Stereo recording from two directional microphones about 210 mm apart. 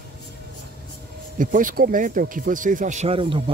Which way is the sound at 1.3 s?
40° right (ahead or behind).